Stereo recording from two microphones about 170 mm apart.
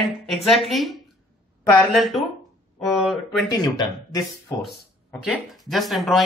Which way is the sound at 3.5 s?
20° left (ahead or behind).